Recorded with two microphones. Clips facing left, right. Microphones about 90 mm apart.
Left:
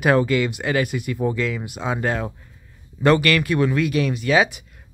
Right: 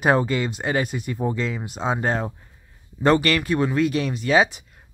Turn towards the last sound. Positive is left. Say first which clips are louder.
# even
turn(degrees=-30)  # may be behind; listen again after turning